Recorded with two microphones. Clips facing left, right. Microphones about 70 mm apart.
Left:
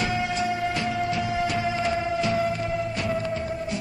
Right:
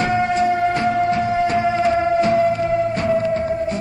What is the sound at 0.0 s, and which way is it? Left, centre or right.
Music, right.